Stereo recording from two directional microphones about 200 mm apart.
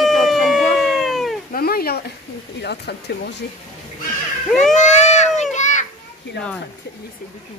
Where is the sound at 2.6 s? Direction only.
55° left (ahead or behind).